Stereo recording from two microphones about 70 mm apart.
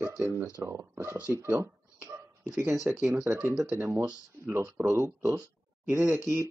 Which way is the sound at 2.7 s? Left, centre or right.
Centre.